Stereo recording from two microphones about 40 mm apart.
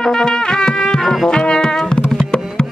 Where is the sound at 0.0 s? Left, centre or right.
Centre.